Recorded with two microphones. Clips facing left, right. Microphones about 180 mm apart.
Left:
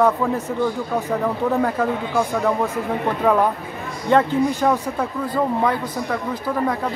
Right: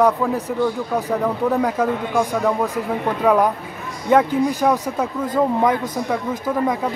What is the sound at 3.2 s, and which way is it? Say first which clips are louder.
A man's voice: right 2 dB; centre (ahead or behind).